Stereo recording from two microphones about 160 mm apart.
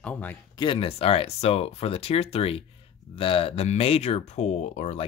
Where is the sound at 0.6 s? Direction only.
35° left (ahead or behind).